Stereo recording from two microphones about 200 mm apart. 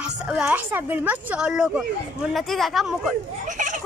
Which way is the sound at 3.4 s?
40° right (ahead or behind).